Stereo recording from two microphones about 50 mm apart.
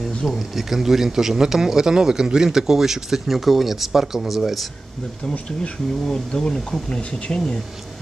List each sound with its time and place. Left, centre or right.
0.0 s a sound: centre
0.6 s speech: centre
5.6 s speech: centre